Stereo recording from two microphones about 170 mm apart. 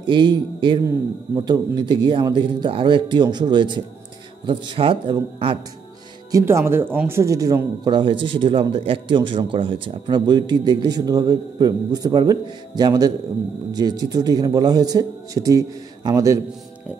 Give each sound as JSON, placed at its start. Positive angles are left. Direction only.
{"t": 0.0, "sound": "mantra", "side_deg": -30}
{"t": 0.8, "sound": "a man's voice", "side_deg": -25}
{"t": 6.3, "sound": "a man's voice", "side_deg": -15}